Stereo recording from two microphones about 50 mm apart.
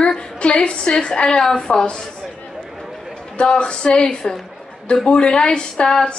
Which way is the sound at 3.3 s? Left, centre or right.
Centre.